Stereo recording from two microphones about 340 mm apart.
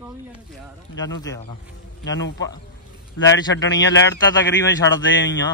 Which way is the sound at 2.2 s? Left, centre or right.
Left.